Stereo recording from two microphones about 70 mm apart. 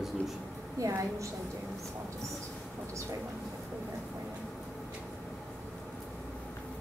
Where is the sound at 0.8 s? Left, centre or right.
Right.